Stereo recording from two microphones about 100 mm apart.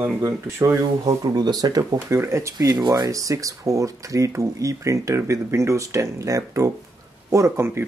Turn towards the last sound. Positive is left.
turn(degrees=-25)  # may be behind; listen again after turning